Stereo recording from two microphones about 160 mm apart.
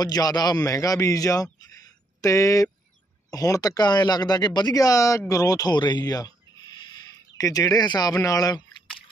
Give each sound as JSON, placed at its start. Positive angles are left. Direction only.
{"t": 0.0, "sound": "a man's voice", "side_deg": 25}
{"t": 7.3, "sound": "speech", "side_deg": 20}